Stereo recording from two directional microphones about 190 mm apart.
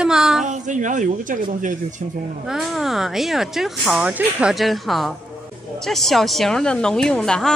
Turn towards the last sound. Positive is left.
turn(degrees=5)  # may be behind; listen again after turning